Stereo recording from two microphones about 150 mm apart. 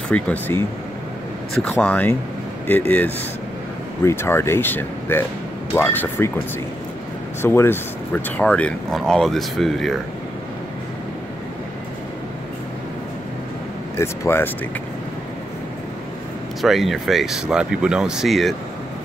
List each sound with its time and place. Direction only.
0.1 s speech: 10° left (ahead or behind)
7.4 s speech: 15° left (ahead or behind)
13.9 s speech: 20° left (ahead or behind)
16.6 s speech: centre (ahead or behind)